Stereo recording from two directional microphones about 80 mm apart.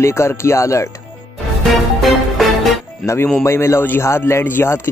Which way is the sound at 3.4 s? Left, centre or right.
Left.